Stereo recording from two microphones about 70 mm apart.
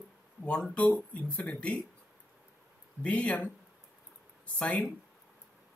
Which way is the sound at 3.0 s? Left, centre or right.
Centre.